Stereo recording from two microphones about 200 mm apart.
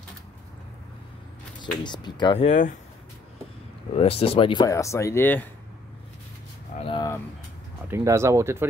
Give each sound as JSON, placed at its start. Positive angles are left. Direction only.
{"t": 1.6, "sound": "speech", "side_deg": 20}
{"t": 3.9, "sound": "speech", "side_deg": 30}
{"t": 6.8, "sound": "speech", "side_deg": 25}
{"t": 7.9, "sound": "speech", "side_deg": -15}